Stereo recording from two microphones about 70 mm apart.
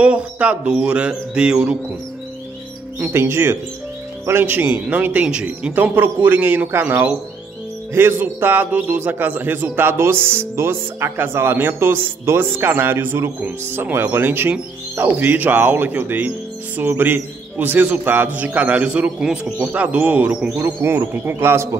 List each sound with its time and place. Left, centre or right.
0.0 s speech: centre
3.1 s a man's voice: right; by 5.7 s centre
5.7 s a man's voice: right
7.9 s a man's voice: right
20.6 s speech: right